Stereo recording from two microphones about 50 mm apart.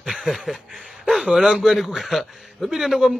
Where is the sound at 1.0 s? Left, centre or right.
Centre.